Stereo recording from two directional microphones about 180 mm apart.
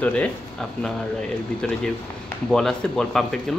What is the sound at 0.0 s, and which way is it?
Speech, 5° left (ahead or behind).